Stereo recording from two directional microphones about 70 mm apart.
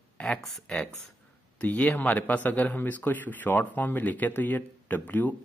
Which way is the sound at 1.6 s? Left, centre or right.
Left.